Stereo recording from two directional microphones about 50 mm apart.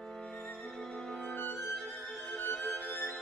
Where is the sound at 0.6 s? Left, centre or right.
Centre.